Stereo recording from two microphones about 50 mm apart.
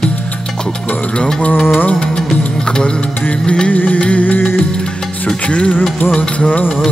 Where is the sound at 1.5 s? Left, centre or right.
Left.